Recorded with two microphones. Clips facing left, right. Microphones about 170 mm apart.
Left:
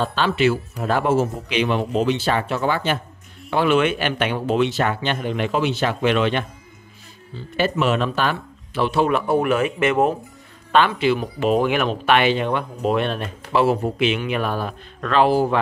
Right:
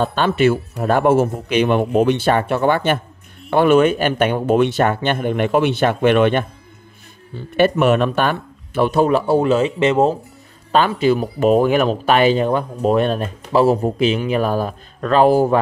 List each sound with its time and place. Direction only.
0.0 s a man's voice: 50° right (ahead or behind); by 10.1 s 25° right (ahead or behind)
10.7 s speech: 40° right (ahead or behind)